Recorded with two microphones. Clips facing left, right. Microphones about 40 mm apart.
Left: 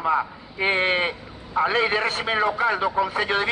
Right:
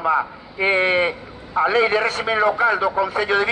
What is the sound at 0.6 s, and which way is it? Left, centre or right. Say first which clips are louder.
A man's voice: right 4 dB; centre.